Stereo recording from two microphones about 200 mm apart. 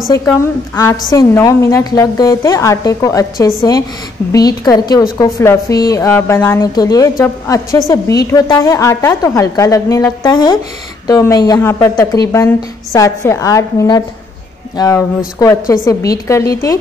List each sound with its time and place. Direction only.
0.1 s a woman's voice: 15° left (ahead or behind)